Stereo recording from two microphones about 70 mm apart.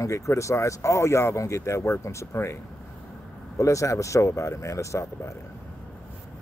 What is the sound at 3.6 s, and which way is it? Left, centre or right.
Speech, left.